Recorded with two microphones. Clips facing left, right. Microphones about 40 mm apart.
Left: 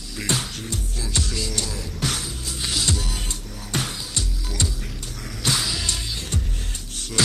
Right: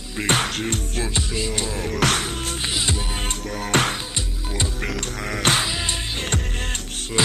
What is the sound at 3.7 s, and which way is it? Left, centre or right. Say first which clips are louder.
Music: right 6 dB; right.